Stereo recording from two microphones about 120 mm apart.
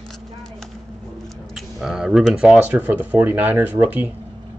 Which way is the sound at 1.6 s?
5° right (ahead or behind).